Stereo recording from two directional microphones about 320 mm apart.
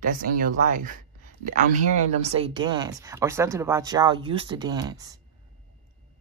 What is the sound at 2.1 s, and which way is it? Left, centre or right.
Speech, centre.